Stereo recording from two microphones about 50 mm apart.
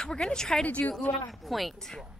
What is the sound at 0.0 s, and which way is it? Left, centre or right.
Speech, centre.